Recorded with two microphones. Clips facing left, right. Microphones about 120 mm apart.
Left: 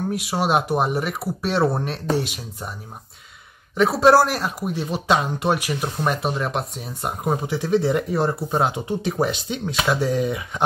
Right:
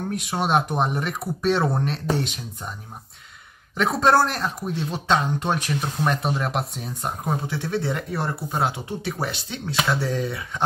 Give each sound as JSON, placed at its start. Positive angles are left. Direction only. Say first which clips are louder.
{"t": 0.1, "sound": "speech", "louder": "even", "side_deg": 5}
{"t": 3.7, "sound": "speech", "louder": "left 4 dB", "side_deg": 5}
{"t": 7.2, "sound": "speech", "louder": "left 6 dB", "side_deg": 15}